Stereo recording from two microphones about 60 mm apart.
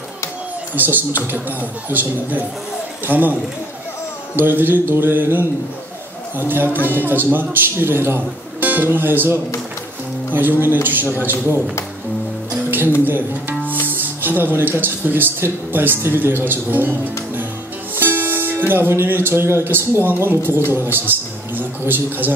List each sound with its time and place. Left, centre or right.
0.7 s a man's voice: right
4.4 s a man's voice: right
13.0 s speech: right
13.8 s music: right
15.0 s a man's voice: right
17.9 s a man's voice: right